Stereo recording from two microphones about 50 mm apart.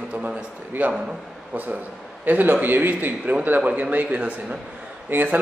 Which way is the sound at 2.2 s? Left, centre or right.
Right.